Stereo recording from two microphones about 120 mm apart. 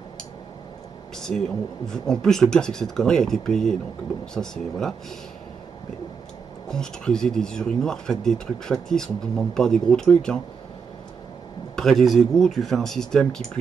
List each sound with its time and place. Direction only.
1.1 s speech: 5° left (ahead or behind)
6.7 s speech: 5° left (ahead or behind)
11.7 s speech: 5° left (ahead or behind)